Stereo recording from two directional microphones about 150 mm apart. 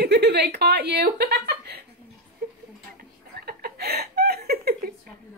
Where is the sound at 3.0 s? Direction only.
90° right.